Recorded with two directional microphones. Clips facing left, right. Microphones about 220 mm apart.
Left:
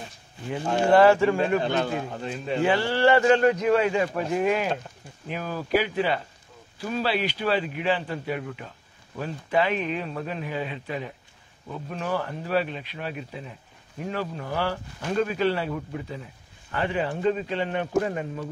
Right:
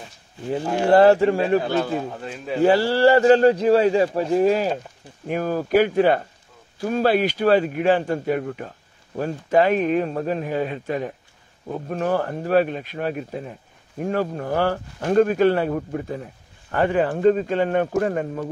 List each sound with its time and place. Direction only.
0.8 s a man's voice: 35° right (ahead or behind)
1.6 s speech: 5° right (ahead or behind)
2.6 s a man's voice: 35° right (ahead or behind)
5.2 s speech: 50° right (ahead or behind)